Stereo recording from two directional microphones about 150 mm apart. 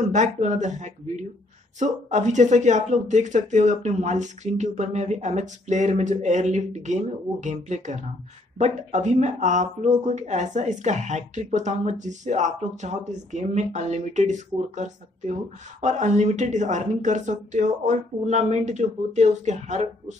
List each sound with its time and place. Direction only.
0.0 s speech: 55° right (ahead or behind)